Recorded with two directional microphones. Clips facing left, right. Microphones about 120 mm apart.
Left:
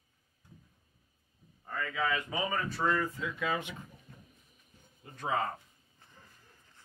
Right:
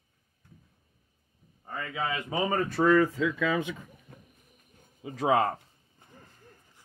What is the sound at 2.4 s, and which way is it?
Speech, 50° right (ahead or behind).